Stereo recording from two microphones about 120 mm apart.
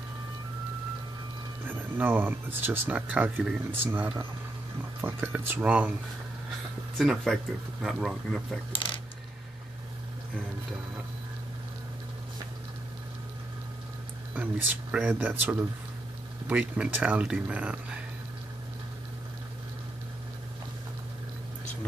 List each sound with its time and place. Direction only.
1.7 s speech: 15° right (ahead or behind)
7.0 s speech: centre (ahead or behind)
8.7 s coin: 45° left (ahead or behind)
14.3 s speech: 10° right (ahead or behind)